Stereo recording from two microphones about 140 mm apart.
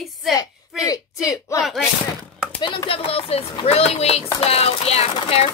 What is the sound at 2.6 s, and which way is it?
Speech, 35° left (ahead or behind).